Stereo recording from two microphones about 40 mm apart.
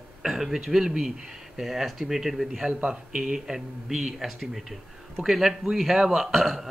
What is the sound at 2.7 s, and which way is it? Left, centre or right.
Speech, right.